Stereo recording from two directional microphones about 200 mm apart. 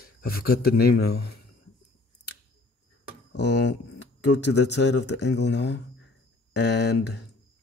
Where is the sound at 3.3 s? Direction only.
60° left (ahead or behind).